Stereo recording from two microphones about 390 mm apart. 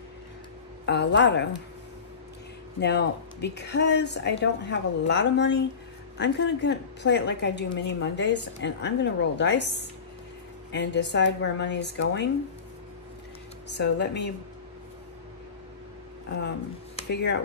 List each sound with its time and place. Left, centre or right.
0.8 s a woman's voice: left
2.8 s a woman's voice: left
13.7 s a woman's voice: left
16.9 s music: left